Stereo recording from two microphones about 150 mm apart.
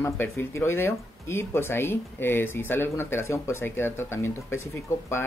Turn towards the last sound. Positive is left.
turn(degrees=20)  # may be behind; listen again after turning